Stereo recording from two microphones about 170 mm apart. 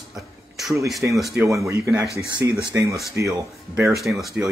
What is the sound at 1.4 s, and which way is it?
Speech, 20° right (ahead or behind).